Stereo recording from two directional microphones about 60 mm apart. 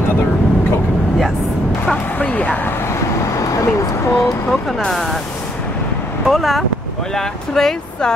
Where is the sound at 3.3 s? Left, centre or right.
Left.